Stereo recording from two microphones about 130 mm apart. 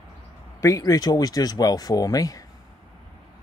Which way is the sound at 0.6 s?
25° left (ahead or behind).